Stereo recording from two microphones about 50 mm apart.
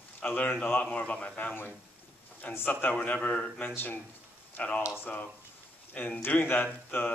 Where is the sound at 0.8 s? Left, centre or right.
Left.